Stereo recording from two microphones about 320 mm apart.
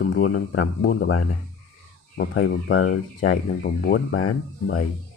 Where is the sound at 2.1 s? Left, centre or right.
Left.